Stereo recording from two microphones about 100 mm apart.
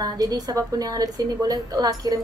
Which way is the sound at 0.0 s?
40° right (ahead or behind).